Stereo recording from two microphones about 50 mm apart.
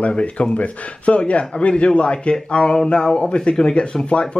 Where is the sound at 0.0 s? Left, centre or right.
Left.